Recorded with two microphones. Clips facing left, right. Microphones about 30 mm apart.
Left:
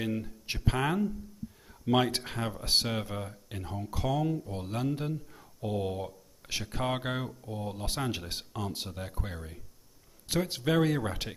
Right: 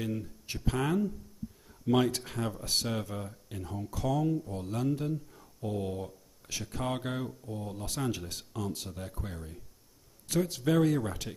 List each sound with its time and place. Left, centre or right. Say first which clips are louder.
0.0 s speech: left 2 dB; left
1.7 s a sound: even; left
2.0 s speech: even; left
2.6 s speech: left 6 dB; left
2.9 s speech: left 1 dB; left
5.3 s a sound: left 2 dB; left
6.6 s speech: left 2 dB; left
10.2 s speech: even; left
10.6 s speech: even; left